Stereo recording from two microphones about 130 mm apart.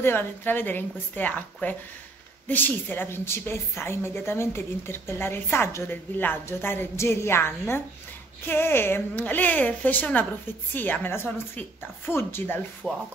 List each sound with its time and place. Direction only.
0.0 s a woman's voice: 15° left (ahead or behind)
12.8 s speech: centre (ahead or behind)